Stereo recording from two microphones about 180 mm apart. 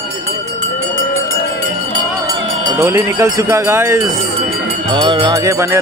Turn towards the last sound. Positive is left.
turn(degrees=-15)  # may be behind; listen again after turning